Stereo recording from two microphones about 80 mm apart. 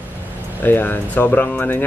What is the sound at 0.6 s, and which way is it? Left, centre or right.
A man's voice, left.